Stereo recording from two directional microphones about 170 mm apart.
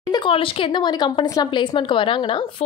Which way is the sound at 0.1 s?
30° left (ahead or behind).